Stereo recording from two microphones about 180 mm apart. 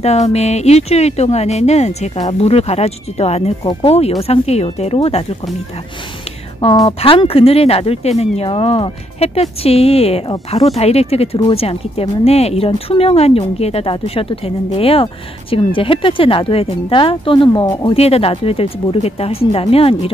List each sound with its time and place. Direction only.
0.0 s speech: 35° left (ahead or behind)
6.8 s speech: 30° left (ahead or behind)